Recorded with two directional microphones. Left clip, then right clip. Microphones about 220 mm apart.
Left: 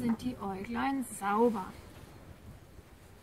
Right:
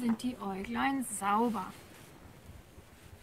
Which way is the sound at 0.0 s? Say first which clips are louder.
Even; 10° right (ahead or behind).